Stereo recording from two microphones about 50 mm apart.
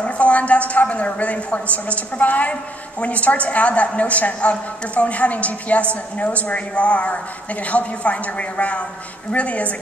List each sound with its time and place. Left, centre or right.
0.0 s a woman's voice: left